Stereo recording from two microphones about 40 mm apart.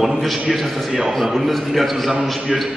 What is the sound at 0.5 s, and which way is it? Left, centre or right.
A man's voice, centre.